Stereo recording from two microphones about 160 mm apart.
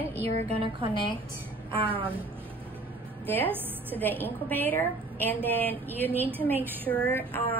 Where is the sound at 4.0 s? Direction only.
10° left (ahead or behind).